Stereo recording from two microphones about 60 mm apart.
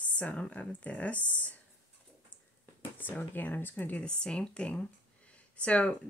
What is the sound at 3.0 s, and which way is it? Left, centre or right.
Speech, left.